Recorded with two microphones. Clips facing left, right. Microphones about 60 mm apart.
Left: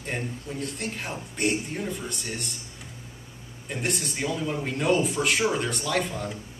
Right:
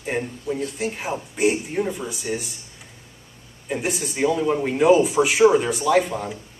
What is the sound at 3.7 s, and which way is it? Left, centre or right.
Speech, centre.